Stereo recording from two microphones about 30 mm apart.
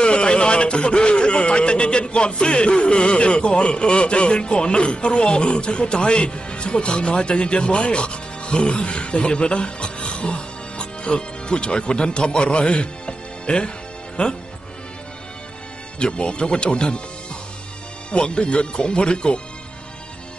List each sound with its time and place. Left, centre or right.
0.0 s speech: left
16.0 s speech: left
18.1 s speech: left